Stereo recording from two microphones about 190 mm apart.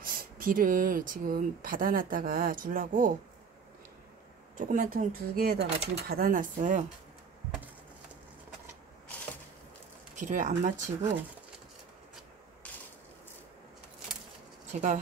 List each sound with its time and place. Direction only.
0.0 s speech: 50° right (ahead or behind)
4.6 s speech: 45° right (ahead or behind)
10.1 s speech: 45° right (ahead or behind)
11.0 s speech: 15° right (ahead or behind)
14.7 s speech: 35° right (ahead or behind)